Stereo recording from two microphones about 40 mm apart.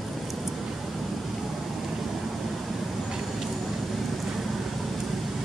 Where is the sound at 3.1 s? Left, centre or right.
Centre.